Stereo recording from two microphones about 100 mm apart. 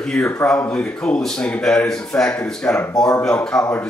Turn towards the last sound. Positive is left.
turn(degrees=10)  # may be behind; listen again after turning